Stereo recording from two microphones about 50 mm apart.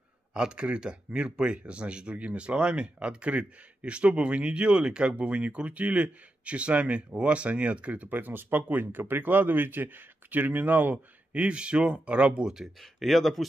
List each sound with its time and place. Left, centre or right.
0.3 s speech: centre; by 11.0 s right
11.3 s speech: right
13.0 s speech: centre